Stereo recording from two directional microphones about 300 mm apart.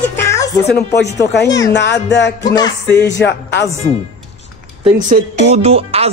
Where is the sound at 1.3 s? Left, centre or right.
Left.